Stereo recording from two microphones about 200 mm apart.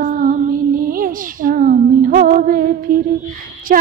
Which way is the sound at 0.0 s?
45° right (ahead or behind).